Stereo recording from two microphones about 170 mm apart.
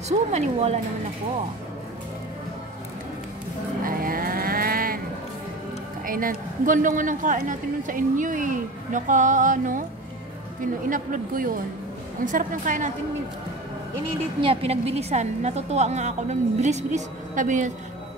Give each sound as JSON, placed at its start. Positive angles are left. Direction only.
{"t": 0.3, "sound": "a woman's voice", "side_deg": -40}
{"t": 3.8, "sound": "cattle", "side_deg": -55}
{"t": 6.0, "sound": "a man's voice", "side_deg": -55}
{"t": 14.4, "sound": "a woman's voice", "side_deg": -35}